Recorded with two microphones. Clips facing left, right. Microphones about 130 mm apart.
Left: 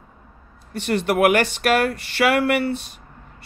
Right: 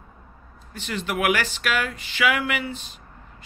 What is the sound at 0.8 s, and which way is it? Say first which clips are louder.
A man's voice: left 6 dB; 60° left (ahead or behind).